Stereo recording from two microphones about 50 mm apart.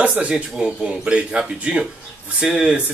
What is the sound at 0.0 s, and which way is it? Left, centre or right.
Speech, right.